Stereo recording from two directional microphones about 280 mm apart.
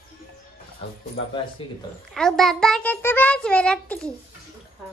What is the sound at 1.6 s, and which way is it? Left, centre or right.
Speech, centre.